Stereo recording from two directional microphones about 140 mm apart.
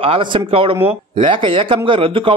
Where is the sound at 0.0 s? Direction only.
40° right (ahead or behind).